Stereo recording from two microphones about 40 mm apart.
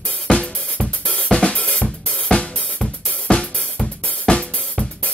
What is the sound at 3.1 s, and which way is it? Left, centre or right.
Drum, left.